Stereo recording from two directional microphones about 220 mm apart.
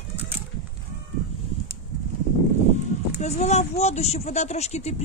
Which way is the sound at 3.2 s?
30° left (ahead or behind).